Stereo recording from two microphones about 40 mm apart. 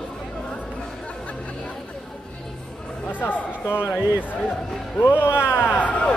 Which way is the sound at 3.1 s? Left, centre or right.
Left.